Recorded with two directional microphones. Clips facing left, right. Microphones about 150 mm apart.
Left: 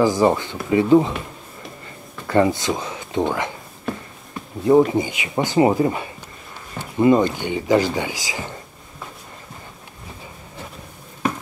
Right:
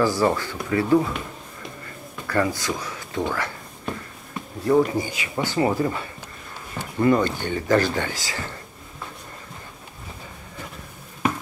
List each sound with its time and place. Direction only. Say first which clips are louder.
0.0 s speech: left 4 dB; 20° left (ahead or behind)
2.2 s speech: left 6 dB; 25° left (ahead or behind)
4.6 s speech: left 5 dB; 20° left (ahead or behind)